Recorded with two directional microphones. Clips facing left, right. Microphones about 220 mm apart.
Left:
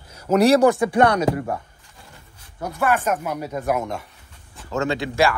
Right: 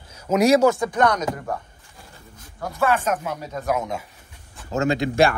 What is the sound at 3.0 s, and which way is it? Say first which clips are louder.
Speech: left 1 dB; 15° left (ahead or behind).